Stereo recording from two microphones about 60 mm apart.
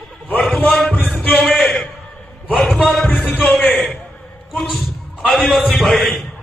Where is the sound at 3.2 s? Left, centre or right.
Centre.